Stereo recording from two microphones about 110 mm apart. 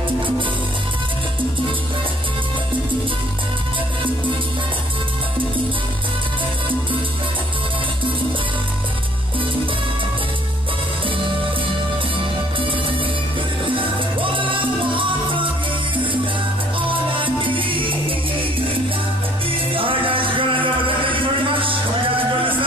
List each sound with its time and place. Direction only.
13.7 s music: 50° right (ahead or behind)
17.1 s music: 50° right (ahead or behind)
19.7 s music: 55° right (ahead or behind)